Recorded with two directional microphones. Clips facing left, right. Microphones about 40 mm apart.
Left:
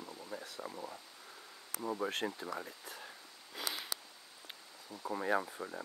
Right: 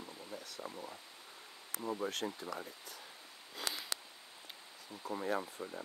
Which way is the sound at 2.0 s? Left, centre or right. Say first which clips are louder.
Left 2 dB; centre.